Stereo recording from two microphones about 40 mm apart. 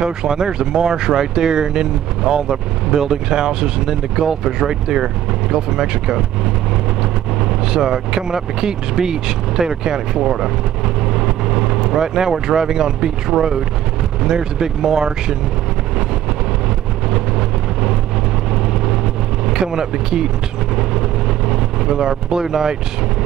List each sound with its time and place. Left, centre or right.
0.0 s speech: centre
7.4 s speech: centre
17.1 s vehicle: centre
19.4 s speech: centre
21.5 s vehicle: centre